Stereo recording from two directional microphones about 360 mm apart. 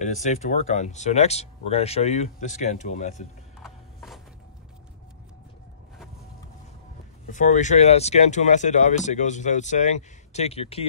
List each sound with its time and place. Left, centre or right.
0.0 s speech: centre
3.6 s horse: centre
7.2 s speech: left